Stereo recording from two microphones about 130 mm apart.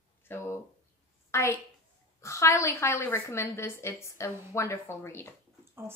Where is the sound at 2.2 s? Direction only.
20° left (ahead or behind).